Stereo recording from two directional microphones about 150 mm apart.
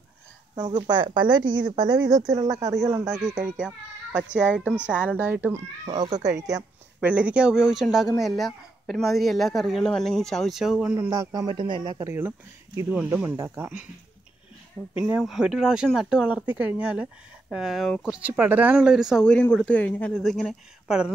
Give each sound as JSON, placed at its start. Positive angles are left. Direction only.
{"t": 0.6, "sound": "speech", "side_deg": -30}
{"t": 3.4, "sound": "speech", "side_deg": -5}
{"t": 6.0, "sound": "speech", "side_deg": -55}
{"t": 7.0, "sound": "speech", "side_deg": -10}
{"t": 11.0, "sound": "speech", "side_deg": -25}
{"t": 12.1, "sound": "speech", "side_deg": -15}
{"t": 15.0, "sound": "speech", "side_deg": -5}
{"t": 19.2, "sound": "speech", "side_deg": 5}